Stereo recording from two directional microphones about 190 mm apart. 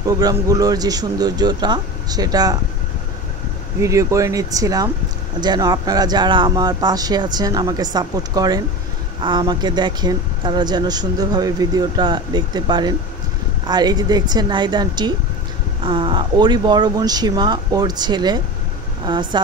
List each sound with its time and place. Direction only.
0.0 s speech: 20° right (ahead or behind)
3.8 s speech: 15° right (ahead or behind)